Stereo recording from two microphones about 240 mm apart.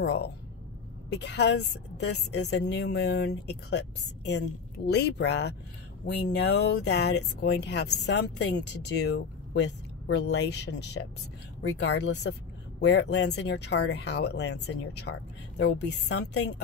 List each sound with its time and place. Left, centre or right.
0.0 s a woman's voice: left